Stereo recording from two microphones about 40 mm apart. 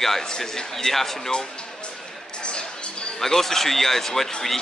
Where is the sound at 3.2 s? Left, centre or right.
Centre.